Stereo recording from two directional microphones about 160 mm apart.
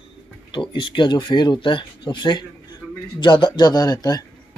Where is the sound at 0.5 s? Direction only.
30° left (ahead or behind).